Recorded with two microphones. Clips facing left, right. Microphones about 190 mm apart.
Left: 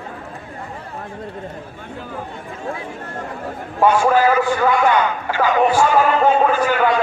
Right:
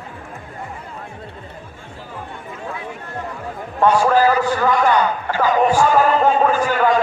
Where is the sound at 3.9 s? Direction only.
40° right (ahead or behind).